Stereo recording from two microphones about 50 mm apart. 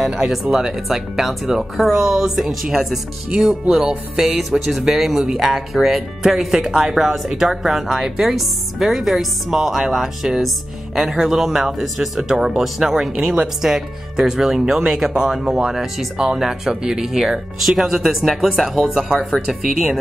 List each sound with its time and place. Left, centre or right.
0.2 s speech: centre
4.2 s speech: centre